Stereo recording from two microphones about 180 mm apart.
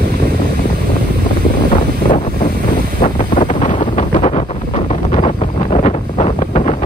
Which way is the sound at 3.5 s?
40° left (ahead or behind).